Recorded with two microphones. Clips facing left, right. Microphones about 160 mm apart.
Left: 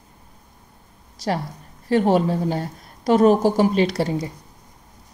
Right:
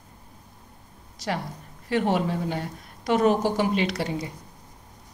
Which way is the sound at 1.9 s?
35° left (ahead or behind).